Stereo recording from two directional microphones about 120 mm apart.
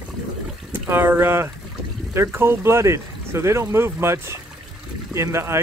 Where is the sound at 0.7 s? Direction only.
20° right (ahead or behind).